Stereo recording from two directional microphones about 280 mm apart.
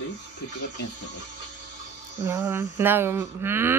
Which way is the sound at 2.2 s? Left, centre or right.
Centre.